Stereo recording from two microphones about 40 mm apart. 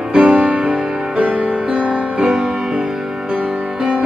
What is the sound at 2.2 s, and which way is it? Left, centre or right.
Music, centre.